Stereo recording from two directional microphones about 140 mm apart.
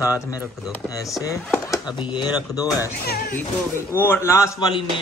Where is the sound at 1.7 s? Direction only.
30° left (ahead or behind).